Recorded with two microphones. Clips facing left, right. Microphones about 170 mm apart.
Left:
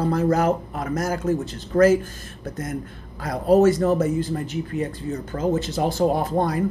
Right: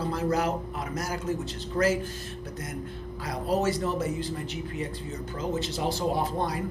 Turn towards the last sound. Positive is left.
turn(degrees=50)  # may be behind; listen again after turning